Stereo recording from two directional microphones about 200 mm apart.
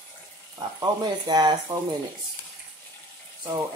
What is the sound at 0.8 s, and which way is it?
Speech, 20° right (ahead or behind).